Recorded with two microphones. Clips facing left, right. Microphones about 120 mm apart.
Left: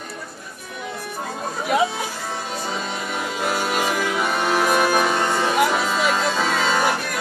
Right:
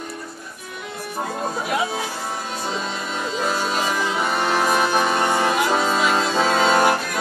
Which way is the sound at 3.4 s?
10° left (ahead or behind).